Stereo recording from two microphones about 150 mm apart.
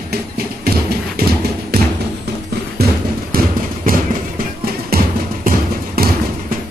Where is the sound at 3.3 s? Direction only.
80° right.